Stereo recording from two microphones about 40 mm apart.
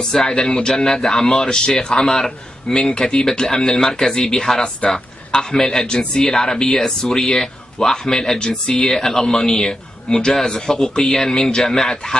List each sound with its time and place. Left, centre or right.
0.1 s a man's voice: centre